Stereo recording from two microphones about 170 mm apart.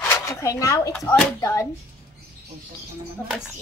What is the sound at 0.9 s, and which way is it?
Speech, 15° left (ahead or behind).